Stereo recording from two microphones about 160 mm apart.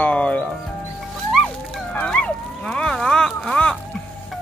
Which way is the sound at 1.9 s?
5° left (ahead or behind).